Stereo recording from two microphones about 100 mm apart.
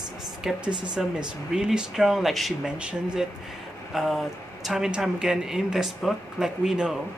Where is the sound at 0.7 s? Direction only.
50° right (ahead or behind).